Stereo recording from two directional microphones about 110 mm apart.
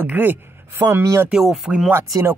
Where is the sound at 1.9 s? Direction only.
20° right (ahead or behind).